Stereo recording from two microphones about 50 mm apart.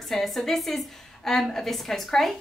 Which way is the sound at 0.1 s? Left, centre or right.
Centre.